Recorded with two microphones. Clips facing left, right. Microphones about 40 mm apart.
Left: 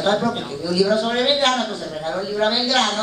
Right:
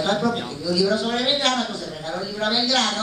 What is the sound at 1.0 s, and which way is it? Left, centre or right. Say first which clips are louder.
Speech: left 3 dB; centre.